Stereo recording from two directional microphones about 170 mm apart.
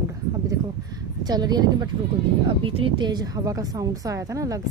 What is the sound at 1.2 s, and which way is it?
A woman's voice, 25° right (ahead or behind).